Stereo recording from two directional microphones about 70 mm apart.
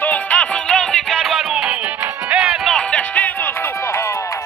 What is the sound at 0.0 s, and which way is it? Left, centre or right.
Music, left.